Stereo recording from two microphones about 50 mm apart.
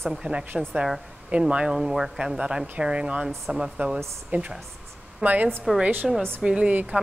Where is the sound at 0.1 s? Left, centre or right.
Centre.